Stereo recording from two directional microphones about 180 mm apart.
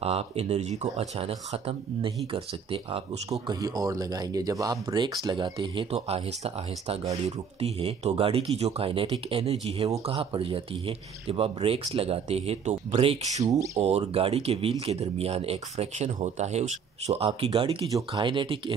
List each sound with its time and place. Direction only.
0.0 s speech: 35° right (ahead or behind)
3.3 s speech: 20° right (ahead or behind)